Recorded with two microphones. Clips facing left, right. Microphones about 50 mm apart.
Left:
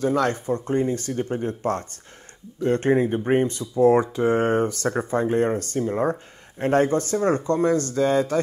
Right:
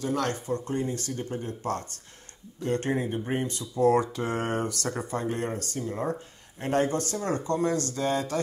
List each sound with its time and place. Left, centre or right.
0.0 s speech: left